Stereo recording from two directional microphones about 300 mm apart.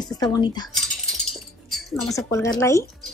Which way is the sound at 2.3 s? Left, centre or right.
Centre.